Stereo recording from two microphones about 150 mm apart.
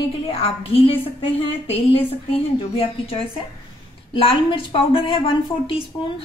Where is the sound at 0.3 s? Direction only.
40° left (ahead or behind).